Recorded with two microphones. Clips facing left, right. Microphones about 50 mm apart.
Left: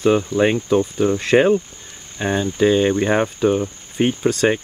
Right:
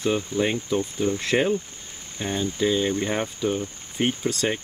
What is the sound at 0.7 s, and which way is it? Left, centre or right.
Speech, left.